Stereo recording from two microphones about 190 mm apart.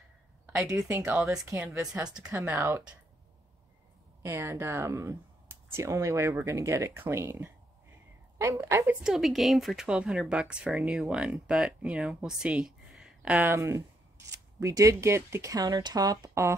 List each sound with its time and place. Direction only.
0.5 s speech: 5° right (ahead or behind)
4.2 s speech: 15° right (ahead or behind)
9.0 s speech: centre (ahead or behind)
13.4 s speech: 15° right (ahead or behind)